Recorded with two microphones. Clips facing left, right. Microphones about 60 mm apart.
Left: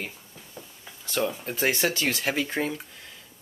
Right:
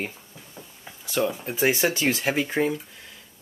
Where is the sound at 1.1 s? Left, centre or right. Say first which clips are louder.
Right 2 dB; centre.